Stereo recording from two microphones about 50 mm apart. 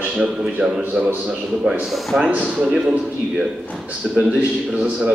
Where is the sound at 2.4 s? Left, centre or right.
Centre.